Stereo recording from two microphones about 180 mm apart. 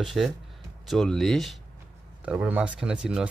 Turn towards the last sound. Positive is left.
turn(degrees=-5)  # may be behind; listen again after turning